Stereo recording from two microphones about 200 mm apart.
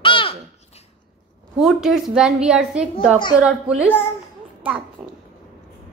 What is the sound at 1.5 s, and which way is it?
A woman's voice, centre (ahead or behind).